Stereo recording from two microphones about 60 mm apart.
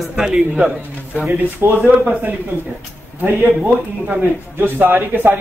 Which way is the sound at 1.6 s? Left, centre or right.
Right.